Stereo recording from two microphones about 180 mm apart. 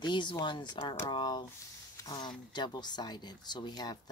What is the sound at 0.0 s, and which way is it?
Speech, 25° left (ahead or behind).